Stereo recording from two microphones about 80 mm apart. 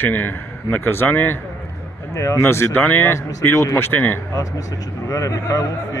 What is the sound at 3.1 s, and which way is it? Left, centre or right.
Speech, left.